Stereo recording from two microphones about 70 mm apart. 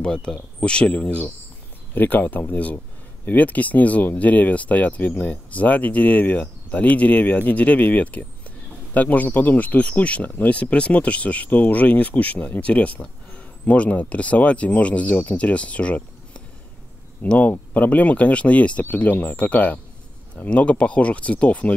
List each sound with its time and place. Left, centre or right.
0.0 s speech: centre